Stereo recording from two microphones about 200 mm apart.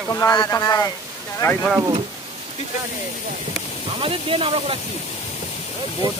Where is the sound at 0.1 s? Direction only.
15° left (ahead or behind).